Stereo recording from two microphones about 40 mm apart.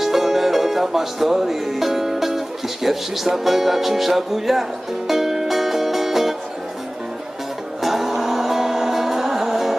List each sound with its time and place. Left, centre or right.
0.0 s music: centre
7.8 s music: centre